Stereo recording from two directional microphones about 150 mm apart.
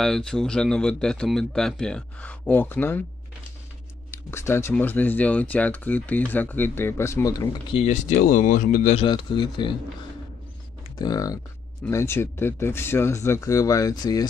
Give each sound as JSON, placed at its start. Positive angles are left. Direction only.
{"t": 0.0, "sound": "speech", "side_deg": 5}
{"t": 4.1, "sound": "speech", "side_deg": 15}
{"t": 7.7, "sound": "speech", "side_deg": 45}
{"t": 8.2, "sound": "speech", "side_deg": 65}
{"t": 8.9, "sound": "speech", "side_deg": 35}
{"t": 11.0, "sound": "speech", "side_deg": 25}